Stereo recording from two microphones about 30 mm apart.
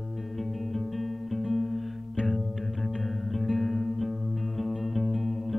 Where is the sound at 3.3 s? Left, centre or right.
Centre.